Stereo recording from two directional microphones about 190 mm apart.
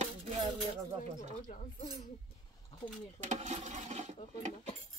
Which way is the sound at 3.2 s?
40° right (ahead or behind).